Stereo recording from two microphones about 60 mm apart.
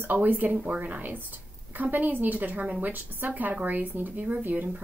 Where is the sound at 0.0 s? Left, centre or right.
Right.